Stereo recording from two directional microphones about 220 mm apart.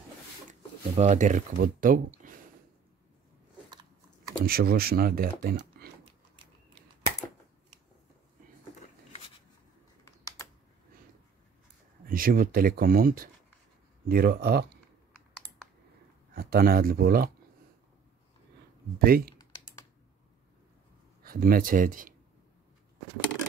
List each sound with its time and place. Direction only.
0.5 s speech: 35° right (ahead or behind)
4.4 s speech: 45° right (ahead or behind)
10.0 s typing: 15° left (ahead or behind)
12.1 s speech: 40° right (ahead or behind)
16.3 s speech: 40° right (ahead or behind)
18.9 s speech: 45° right (ahead or behind)
21.2 s speech: 40° right (ahead or behind)